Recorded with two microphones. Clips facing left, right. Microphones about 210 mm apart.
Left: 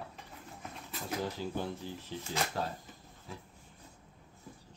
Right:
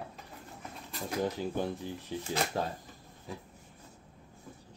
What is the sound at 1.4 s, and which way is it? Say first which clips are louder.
Speech: right 3 dB; 15° right (ahead or behind).